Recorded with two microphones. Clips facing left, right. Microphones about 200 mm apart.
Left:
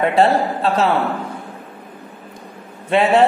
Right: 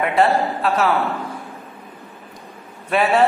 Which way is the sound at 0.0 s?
30° left (ahead or behind).